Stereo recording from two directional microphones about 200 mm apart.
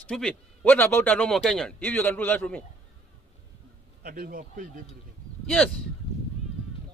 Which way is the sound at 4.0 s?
50° right (ahead or behind).